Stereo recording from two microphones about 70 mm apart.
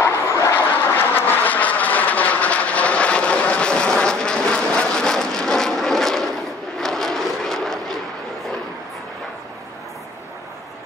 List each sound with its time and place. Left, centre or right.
0.0 s vehicle: left
0.9 s vehicle: left; by 8.0 s centre